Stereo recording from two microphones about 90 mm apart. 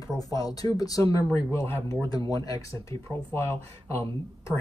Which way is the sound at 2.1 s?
45° left (ahead or behind).